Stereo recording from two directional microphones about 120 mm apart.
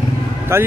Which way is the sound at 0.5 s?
20° right (ahead or behind).